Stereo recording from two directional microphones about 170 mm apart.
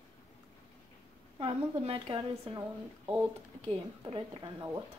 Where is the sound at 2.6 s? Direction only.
10° right (ahead or behind).